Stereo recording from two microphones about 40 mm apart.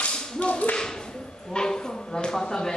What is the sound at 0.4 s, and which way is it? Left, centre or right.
Tap, left.